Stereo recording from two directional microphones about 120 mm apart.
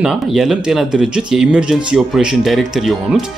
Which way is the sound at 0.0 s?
5° right (ahead or behind).